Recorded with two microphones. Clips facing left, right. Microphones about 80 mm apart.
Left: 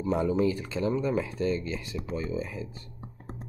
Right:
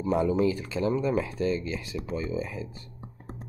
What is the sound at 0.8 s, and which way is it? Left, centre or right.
Speech, right.